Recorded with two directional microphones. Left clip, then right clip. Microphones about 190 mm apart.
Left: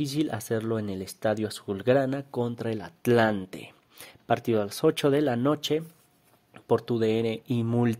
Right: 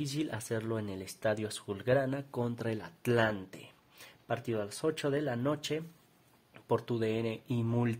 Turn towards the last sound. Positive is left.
turn(degrees=25)  # may be behind; listen again after turning